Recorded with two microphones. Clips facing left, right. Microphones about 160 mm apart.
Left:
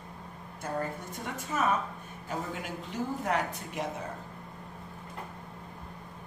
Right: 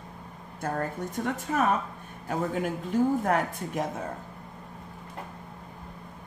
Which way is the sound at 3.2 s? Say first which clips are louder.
Right 4 dB; 45° right (ahead or behind).